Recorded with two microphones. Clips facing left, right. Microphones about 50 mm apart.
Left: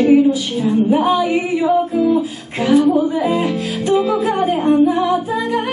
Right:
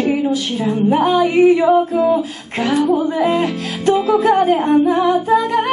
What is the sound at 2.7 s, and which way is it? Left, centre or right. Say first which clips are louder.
Music: left 3 dB; centre.